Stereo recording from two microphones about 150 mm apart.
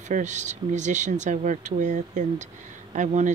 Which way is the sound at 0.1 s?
55° right (ahead or behind).